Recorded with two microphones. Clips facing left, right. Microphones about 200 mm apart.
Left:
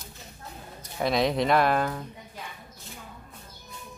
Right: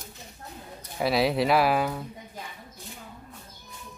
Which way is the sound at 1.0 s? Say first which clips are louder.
Right 1 dB; 5° right (ahead or behind).